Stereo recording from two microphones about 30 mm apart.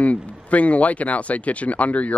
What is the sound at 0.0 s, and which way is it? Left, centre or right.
Speech, left.